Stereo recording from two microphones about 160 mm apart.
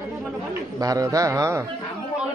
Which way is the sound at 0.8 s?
20° right (ahead or behind).